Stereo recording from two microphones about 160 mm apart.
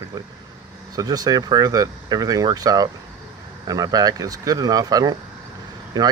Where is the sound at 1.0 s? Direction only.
25° right (ahead or behind).